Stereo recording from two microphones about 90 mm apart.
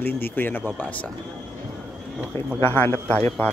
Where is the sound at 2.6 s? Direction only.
25° left (ahead or behind).